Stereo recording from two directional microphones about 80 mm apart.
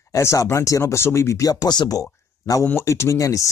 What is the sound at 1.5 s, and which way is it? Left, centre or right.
Speech, left.